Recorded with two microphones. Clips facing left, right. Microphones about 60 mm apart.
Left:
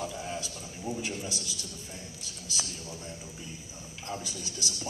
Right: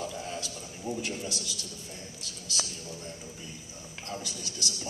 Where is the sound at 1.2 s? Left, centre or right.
Left.